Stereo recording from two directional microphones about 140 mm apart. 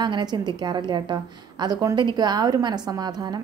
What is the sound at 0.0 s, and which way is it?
A woman's voice, 30° right (ahead or behind).